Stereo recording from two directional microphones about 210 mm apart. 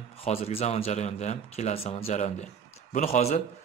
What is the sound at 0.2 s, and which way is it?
Speech, 30° left (ahead or behind).